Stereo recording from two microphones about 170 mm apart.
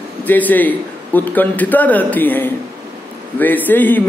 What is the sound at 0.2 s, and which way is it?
A man's voice, 10° left (ahead or behind).